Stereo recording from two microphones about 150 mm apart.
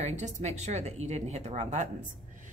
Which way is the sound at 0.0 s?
50° right (ahead or behind).